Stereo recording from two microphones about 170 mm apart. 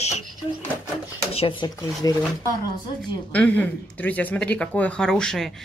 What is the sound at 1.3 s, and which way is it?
Speech, 35° left (ahead or behind).